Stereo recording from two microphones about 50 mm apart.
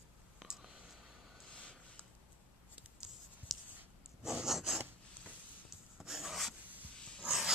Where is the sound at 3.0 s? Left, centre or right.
Centre.